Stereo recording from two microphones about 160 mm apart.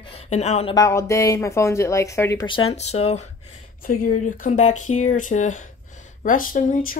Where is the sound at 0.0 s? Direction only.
40° left (ahead or behind).